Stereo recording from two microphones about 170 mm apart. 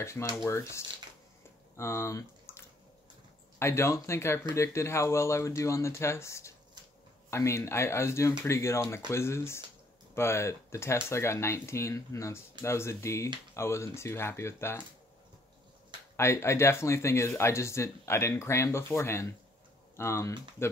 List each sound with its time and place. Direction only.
0.0 s speech: 15° left (ahead or behind)
16.2 s speech: 15° left (ahead or behind)